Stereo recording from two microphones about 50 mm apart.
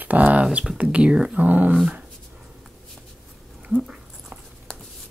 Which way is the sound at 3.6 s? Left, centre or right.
Right.